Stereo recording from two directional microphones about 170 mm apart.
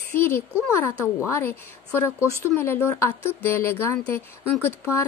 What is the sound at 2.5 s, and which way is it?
Speech, 15° left (ahead or behind).